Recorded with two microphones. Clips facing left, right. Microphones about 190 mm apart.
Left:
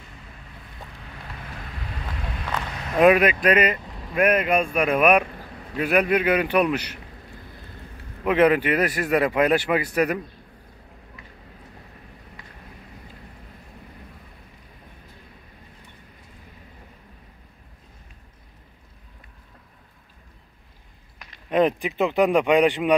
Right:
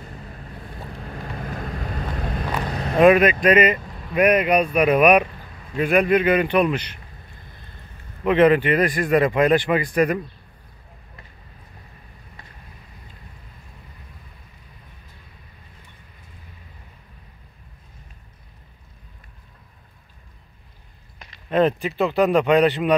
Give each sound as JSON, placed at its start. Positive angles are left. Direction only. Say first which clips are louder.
{"t": 0.0, "sound": "boat", "louder": "right 7 dB", "side_deg": -45}
{"t": 2.6, "sound": "vehicle", "louder": "right 5 dB", "side_deg": -35}
{"t": 3.0, "sound": "speech", "louder": "right 2 dB", "side_deg": 5}
{"t": 3.5, "sound": "speech", "louder": "right 4 dB", "side_deg": -5}
{"t": 5.8, "sound": "a man's voice", "louder": "right 3 dB", "side_deg": 5}
{"t": 8.3, "sound": "a man's voice", "louder": "right 3 dB", "side_deg": 10}
{"t": 21.5, "sound": "a man's voice", "louder": "right 1 dB", "side_deg": 15}